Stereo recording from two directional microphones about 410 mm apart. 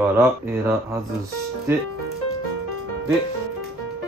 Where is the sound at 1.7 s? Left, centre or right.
Centre.